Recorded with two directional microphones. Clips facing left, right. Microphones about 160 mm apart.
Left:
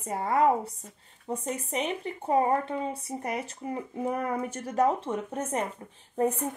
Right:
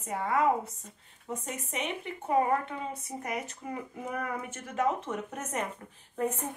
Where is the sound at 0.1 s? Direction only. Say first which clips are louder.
Left 3 dB; 35° left (ahead or behind).